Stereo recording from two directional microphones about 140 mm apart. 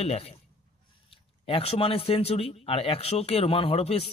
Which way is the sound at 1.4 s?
45° left (ahead or behind).